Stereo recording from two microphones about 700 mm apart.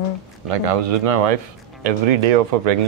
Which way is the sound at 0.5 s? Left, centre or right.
Right.